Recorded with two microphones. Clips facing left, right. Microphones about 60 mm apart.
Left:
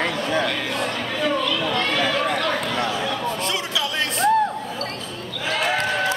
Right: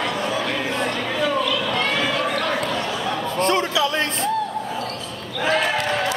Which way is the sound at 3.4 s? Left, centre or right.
Right.